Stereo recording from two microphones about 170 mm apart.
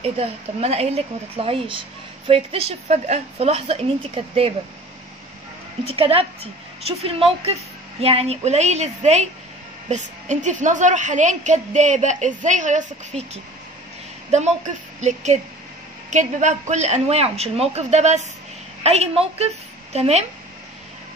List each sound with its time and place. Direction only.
0.0 s a woman's voice: 35° right (ahead or behind)
5.9 s a woman's voice: 35° right (ahead or behind)